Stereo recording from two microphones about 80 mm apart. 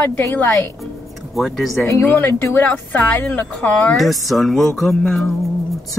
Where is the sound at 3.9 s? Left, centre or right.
Centre.